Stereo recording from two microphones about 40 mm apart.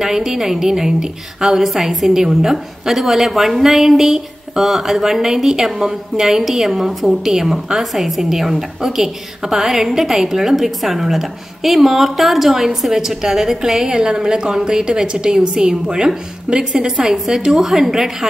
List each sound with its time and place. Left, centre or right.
0.0 s a woman's voice: centre